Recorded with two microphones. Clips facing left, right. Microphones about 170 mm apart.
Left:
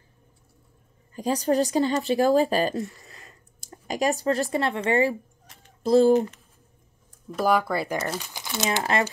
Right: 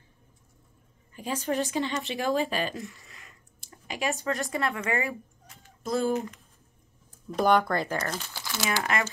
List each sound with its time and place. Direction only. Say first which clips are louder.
1.1 s speech: left 6 dB; 40° left (ahead or behind)
7.3 s speech: even; 5° left (ahead or behind); by 9.0 s 30° left (ahead or behind)